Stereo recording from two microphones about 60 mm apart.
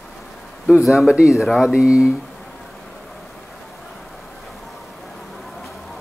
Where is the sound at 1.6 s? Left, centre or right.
Centre.